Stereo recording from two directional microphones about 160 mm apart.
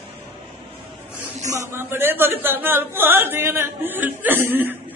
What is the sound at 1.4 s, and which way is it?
Speech, 20° right (ahead or behind).